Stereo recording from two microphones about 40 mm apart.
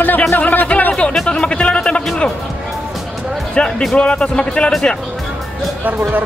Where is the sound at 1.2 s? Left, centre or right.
Left.